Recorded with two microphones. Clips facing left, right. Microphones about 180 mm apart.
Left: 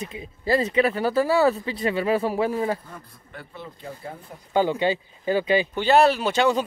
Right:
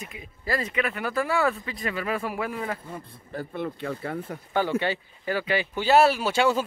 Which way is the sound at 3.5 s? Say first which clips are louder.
Right 7 dB; 60° right (ahead or behind).